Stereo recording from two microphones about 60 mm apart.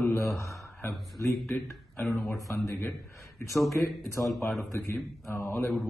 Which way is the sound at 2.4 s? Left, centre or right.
Left.